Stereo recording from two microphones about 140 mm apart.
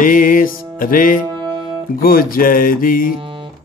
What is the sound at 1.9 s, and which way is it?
Speech, 90° left.